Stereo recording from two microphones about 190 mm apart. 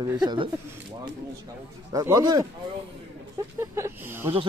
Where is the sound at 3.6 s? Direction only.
15° right (ahead or behind).